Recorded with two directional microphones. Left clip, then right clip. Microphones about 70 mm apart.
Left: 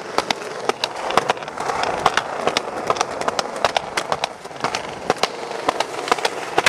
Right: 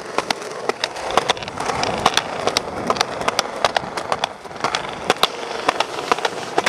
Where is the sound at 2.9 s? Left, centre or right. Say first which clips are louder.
Right 1 dB; right.